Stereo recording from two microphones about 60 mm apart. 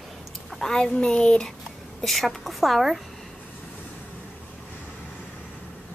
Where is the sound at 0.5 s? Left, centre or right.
Centre.